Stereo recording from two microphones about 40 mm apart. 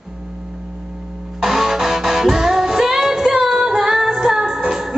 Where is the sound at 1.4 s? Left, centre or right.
Centre.